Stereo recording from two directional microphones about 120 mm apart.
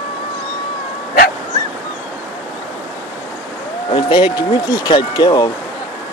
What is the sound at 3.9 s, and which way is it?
Speech, 40° left (ahead or behind).